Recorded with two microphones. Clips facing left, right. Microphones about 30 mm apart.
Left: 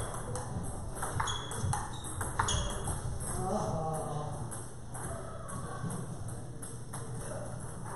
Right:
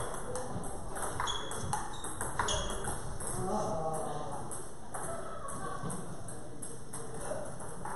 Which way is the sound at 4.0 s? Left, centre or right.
Centre.